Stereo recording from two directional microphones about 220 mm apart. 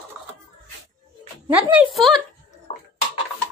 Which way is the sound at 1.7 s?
5° right (ahead or behind).